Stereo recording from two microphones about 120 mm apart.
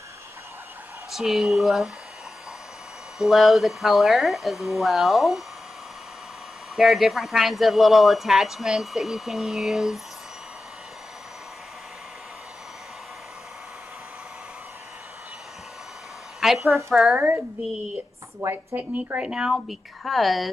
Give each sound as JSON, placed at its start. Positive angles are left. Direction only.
{"t": 1.1, "sound": "speech", "side_deg": 0}
{"t": 3.2, "sound": "speech", "side_deg": 0}
{"t": 6.8, "sound": "speech", "side_deg": 0}
{"t": 16.3, "sound": "speech", "side_deg": 0}
{"t": 18.4, "sound": "a woman's voice", "side_deg": -25}
{"t": 18.8, "sound": "speech", "side_deg": -10}